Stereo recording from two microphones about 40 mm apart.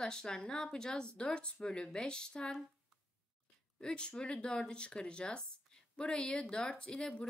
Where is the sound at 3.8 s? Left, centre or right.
Left.